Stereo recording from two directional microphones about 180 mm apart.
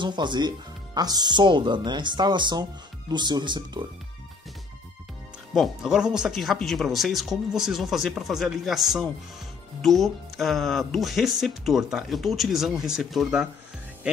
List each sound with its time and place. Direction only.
0.0 s speech: 25° right (ahead or behind)
5.5 s speech: centre (ahead or behind)